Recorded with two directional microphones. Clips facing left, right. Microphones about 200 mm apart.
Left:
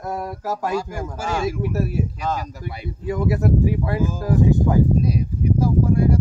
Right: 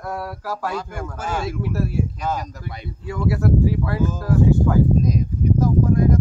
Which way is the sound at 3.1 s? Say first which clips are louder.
Left 1 dB; 20° left (ahead or behind).